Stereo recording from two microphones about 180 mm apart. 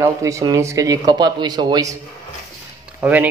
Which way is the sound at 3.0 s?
10° right (ahead or behind).